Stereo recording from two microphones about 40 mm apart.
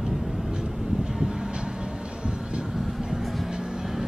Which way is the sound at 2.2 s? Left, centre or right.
Right.